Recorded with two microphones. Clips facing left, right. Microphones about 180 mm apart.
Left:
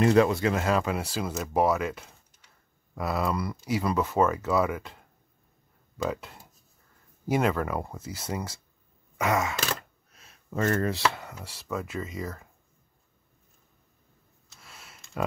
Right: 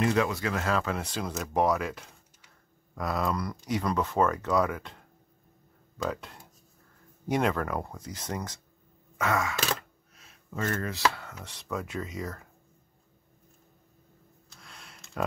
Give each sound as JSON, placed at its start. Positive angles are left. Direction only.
{"t": 0.0, "sound": "speech", "side_deg": 35}
{"t": 9.2, "sound": "wail", "side_deg": 20}
{"t": 10.5, "sound": "chopping", "side_deg": 40}
{"t": 11.1, "sound": "speech", "side_deg": 20}
{"t": 11.3, "sound": "speech", "side_deg": 5}
{"t": 14.5, "sound": "a sound", "side_deg": 5}